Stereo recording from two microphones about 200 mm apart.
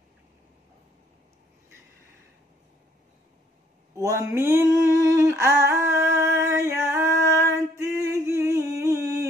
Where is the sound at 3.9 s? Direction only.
15° right (ahead or behind).